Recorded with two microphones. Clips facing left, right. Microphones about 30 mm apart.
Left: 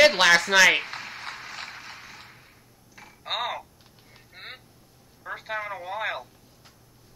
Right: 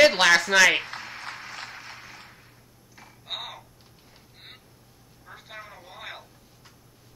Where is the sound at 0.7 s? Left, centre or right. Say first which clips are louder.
Left 1 dB; centre.